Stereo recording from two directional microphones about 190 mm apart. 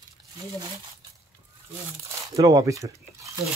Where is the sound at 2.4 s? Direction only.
15° right (ahead or behind).